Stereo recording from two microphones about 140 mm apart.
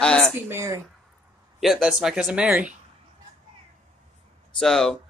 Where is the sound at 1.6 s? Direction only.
5° right (ahead or behind).